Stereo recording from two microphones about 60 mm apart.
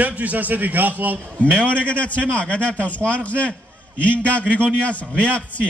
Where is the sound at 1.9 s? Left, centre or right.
Left.